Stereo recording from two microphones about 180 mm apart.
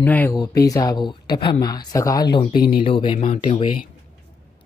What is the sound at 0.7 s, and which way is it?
Speech, 20° left (ahead or behind).